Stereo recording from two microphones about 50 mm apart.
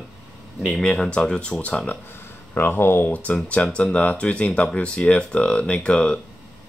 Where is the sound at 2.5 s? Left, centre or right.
Left.